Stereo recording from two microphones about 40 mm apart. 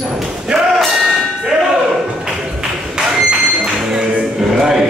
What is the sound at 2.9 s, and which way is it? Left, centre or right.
Music, centre.